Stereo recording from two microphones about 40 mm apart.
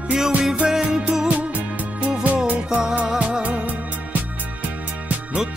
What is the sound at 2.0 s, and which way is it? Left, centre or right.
Music, right.